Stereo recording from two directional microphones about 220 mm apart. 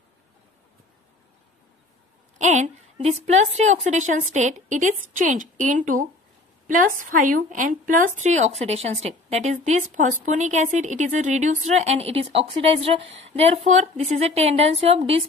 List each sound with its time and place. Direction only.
2.3 s a woman's voice: 30° right (ahead or behind)